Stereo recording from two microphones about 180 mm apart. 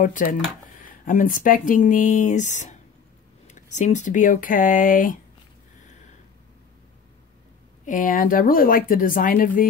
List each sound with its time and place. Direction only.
0.0 s speech: 50° left (ahead or behind)
7.8 s speech: 45° left (ahead or behind)